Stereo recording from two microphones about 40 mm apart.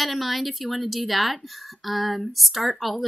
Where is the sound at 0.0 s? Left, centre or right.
Centre.